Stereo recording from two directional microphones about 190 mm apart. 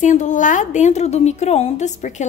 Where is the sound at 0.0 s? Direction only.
40° left (ahead or behind).